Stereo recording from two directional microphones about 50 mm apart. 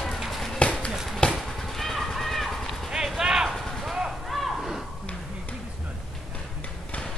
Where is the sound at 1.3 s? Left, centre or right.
Centre.